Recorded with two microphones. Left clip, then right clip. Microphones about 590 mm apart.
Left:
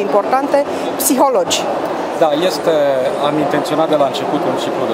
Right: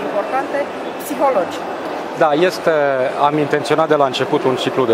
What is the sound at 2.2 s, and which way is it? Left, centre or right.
Speech, right.